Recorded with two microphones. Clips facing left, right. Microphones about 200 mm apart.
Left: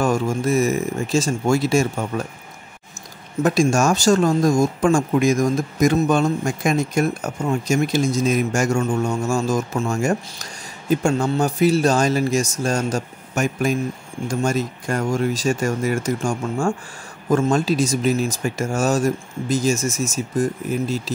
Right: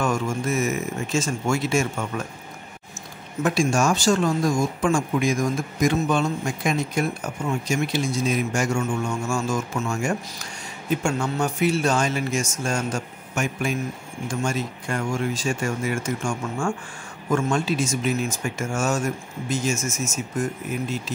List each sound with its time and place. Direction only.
0.0 s speech: 35° left (ahead or behind)
3.4 s speech: 40° left (ahead or behind)